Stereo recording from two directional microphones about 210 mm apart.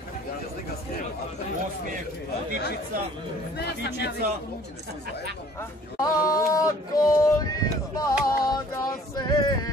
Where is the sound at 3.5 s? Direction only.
55° left (ahead or behind).